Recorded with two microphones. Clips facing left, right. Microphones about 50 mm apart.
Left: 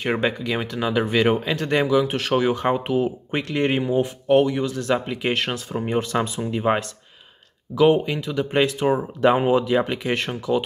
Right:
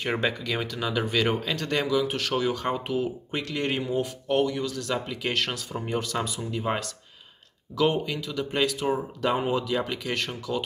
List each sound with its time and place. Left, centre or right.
0.0 s speech: centre
7.7 s speech: centre